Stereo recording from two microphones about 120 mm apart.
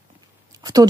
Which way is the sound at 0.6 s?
30° right (ahead or behind).